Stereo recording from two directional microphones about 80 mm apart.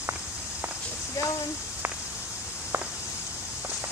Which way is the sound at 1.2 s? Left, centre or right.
Left.